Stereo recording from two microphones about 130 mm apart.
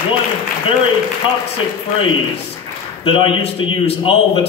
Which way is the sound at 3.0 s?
40° left (ahead or behind).